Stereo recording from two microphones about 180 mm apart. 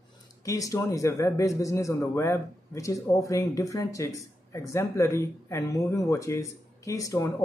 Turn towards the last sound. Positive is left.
turn(degrees=20)  # may be behind; listen again after turning